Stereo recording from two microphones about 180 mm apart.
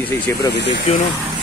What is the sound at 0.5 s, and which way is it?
Speech, 75° left (ahead or behind).